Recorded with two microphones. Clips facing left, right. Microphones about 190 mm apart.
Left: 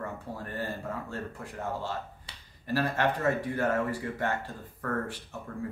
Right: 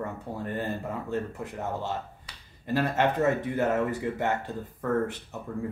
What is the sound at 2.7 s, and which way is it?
Speech, 20° right (ahead or behind).